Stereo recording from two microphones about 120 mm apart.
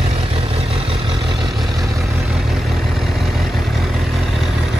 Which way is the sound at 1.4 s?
Centre (ahead or behind).